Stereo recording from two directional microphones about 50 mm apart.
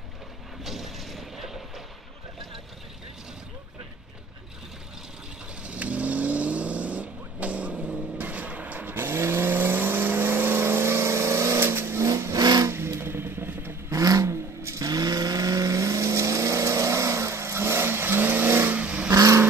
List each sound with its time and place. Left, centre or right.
0.7 s a sound: centre
5.6 s vehicle: right
8.9 s vehicle: right
11.6 s vehicle: right
13.8 s vehicle: right
18.7 s vehicle: right
19.0 s vehicle: right